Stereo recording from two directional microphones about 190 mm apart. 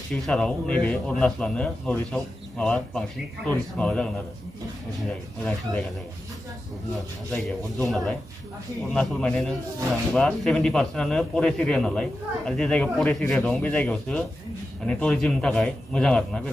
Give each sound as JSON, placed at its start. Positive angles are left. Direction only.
{"t": 0.1, "sound": "speech", "side_deg": 5}
{"t": 5.4, "sound": "speech", "side_deg": 5}
{"t": 7.3, "sound": "speech", "side_deg": 0}